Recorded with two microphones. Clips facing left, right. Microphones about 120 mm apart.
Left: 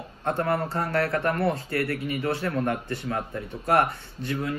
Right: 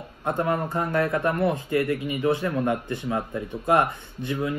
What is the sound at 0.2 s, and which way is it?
A man's voice, 15° right (ahead or behind).